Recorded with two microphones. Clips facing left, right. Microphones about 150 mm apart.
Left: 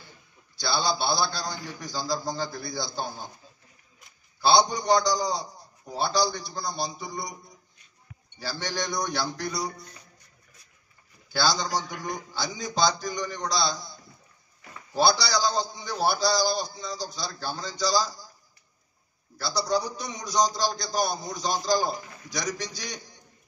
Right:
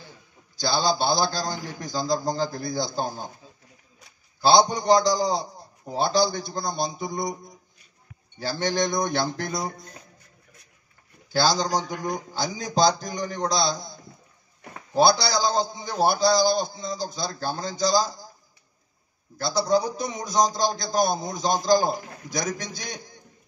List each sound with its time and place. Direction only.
0.6 s a man's voice: 40° right (ahead or behind)
4.4 s a man's voice: 45° right (ahead or behind)
6.3 s a man's voice: 45° right (ahead or behind)
8.4 s a man's voice: 45° right (ahead or behind)
11.3 s a man's voice: 45° right (ahead or behind)
19.4 s a man's voice: 50° right (ahead or behind)